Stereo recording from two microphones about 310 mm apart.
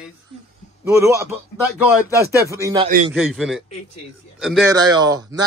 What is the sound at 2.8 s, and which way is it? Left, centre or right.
Speech, right.